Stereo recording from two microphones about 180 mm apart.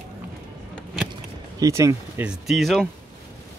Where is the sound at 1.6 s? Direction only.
15° right (ahead or behind).